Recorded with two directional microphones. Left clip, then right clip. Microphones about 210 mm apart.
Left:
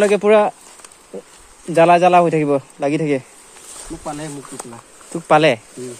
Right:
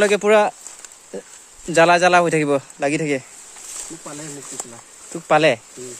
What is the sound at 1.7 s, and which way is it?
Speech, 20° right (ahead or behind).